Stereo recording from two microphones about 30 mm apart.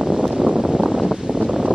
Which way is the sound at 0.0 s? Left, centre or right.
Centre.